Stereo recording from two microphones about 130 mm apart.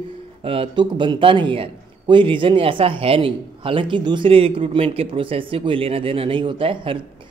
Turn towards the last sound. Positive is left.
turn(degrees=-40)  # may be behind; listen again after turning